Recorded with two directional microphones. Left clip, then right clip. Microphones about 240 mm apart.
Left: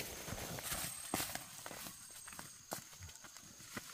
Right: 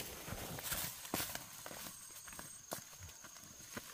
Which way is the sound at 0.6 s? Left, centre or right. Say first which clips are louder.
Right 2 dB; right.